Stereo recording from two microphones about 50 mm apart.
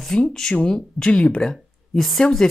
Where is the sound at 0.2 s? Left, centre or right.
Centre.